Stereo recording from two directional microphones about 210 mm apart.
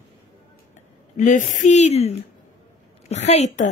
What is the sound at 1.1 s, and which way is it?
A woman's voice, 35° left (ahead or behind).